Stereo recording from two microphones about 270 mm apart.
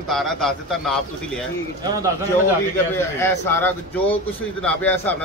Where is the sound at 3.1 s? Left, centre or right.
Centre.